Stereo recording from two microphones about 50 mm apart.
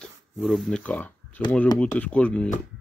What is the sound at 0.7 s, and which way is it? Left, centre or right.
Speech, left.